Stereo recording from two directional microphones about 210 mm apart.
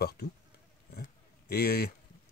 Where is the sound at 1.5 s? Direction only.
45° left (ahead or behind).